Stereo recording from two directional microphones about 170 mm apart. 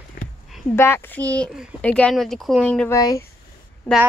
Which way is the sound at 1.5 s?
5° right (ahead or behind).